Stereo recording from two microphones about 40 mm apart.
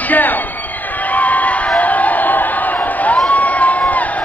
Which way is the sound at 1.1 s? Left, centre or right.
Left.